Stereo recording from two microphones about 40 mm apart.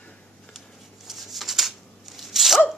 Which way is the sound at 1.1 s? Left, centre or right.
Centre.